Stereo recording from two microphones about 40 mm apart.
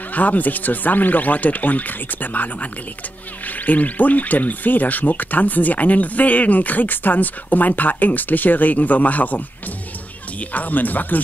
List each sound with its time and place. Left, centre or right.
0.1 s speech: left
10.5 s speech: left